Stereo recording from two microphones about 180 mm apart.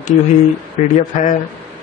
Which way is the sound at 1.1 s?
40° left (ahead or behind).